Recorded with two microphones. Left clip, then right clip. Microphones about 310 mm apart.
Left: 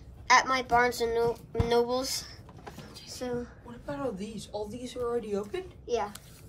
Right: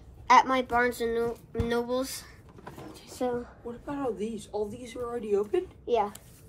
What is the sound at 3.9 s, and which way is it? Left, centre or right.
Speech, centre.